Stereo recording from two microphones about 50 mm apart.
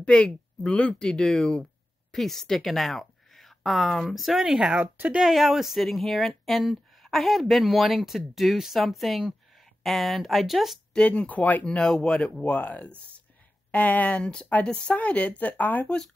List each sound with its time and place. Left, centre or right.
0.0 s speech: centre
0.7 s speech: left
0.9 s a woman's voice: centre
4.5 s speech: centre
11.1 s speech: left
11.6 s speech: centre
14.2 s speech: centre; by 15.9 s left